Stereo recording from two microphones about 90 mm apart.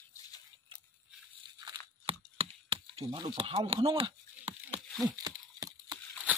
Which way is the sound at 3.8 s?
90° right.